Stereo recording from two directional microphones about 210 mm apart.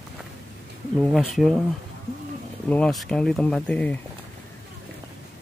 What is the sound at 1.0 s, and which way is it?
Speech, centre (ahead or behind).